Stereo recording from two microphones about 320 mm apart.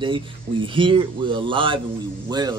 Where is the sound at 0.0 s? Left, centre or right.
Centre.